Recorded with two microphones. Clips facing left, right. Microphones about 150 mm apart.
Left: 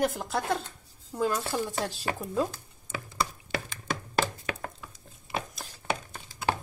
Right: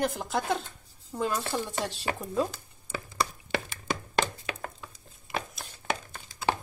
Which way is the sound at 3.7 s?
5° left (ahead or behind).